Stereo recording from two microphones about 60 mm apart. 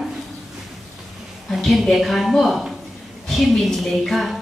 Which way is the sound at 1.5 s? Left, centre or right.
Centre.